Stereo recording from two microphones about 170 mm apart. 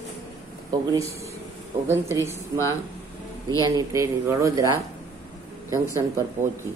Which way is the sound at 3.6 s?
20° right (ahead or behind).